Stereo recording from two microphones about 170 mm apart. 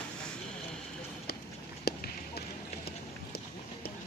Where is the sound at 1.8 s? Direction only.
70° left (ahead or behind).